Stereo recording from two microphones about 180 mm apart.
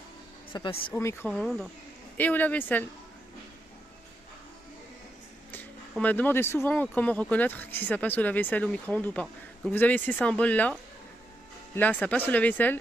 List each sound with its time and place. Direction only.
0.5 s speech: 30° left (ahead or behind)
0.9 s speech: 15° left (ahead or behind)
1.3 s speech: centre (ahead or behind)
5.5 s speech: 10° left (ahead or behind)